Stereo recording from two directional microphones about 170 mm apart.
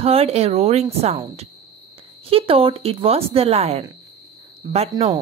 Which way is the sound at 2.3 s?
35° right (ahead or behind).